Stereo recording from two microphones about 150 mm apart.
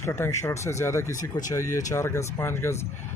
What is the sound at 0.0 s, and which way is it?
Speech, 15° left (ahead or behind).